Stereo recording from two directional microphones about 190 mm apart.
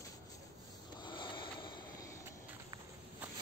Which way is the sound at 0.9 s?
25° left (ahead or behind).